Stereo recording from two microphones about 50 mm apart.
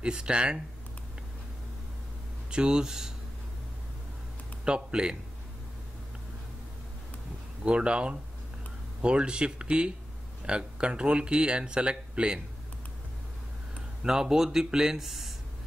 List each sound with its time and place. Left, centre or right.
0.0 s speech: centre
2.5 s a man's voice: centre
4.6 s a man's voice: centre
7.6 s speech: right
14.0 s a man's voice: centre